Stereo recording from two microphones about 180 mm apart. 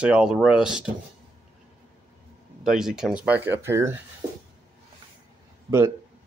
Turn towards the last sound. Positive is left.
turn(degrees=-15)  # may be behind; listen again after turning